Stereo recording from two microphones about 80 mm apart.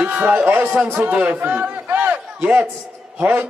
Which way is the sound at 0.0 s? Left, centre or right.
Right.